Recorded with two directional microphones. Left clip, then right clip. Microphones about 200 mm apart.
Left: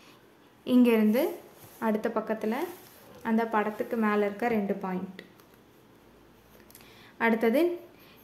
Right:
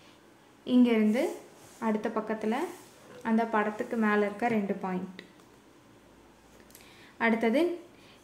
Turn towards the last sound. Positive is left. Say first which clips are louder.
# left 2 dB
turn(degrees=10)  # may be behind; listen again after turning